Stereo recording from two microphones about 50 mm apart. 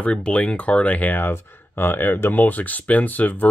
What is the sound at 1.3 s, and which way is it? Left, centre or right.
Speech, left.